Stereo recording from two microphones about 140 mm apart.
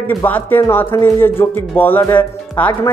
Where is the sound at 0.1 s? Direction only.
15° left (ahead or behind).